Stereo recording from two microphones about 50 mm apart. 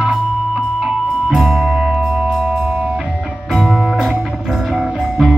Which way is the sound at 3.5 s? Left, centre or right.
Centre.